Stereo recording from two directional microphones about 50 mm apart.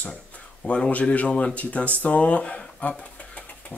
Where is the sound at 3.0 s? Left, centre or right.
Left.